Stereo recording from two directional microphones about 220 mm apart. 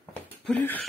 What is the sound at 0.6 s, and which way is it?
Speech, 10° left (ahead or behind).